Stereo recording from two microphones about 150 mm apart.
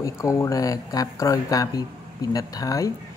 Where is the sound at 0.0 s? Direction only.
20° left (ahead or behind).